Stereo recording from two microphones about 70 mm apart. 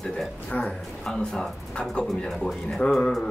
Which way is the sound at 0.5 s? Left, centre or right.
Centre.